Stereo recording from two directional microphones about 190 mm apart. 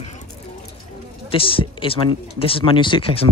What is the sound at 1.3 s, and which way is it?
A woman's voice, 30° left (ahead or behind).